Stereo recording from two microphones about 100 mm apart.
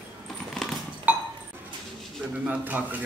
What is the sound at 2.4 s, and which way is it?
Speech, 15° right (ahead or behind).